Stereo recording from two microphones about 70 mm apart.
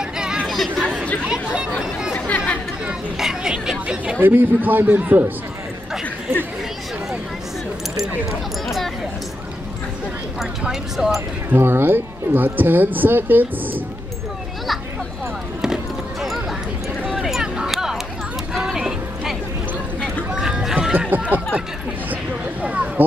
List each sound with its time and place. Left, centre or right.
0.5 s speech: centre
1.2 s speech: centre
2.1 s speech: centre
3.2 s speech: centre
4.2 s speech: right
8.3 s speech: centre
10.4 s speech: centre
11.1 s speech: right
15.6 s a sound: centre
20.3 s a sound: centre
21.1 s speech: right
22.1 s a sound: right